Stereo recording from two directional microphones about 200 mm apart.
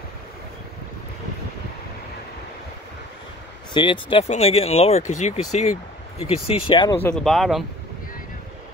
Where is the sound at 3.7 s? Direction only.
25° left (ahead or behind).